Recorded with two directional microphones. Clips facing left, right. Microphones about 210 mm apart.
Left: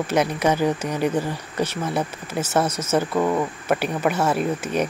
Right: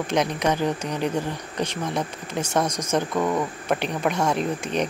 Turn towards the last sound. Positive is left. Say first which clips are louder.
# left 2 dB
turn(degrees=5)  # may be behind; listen again after turning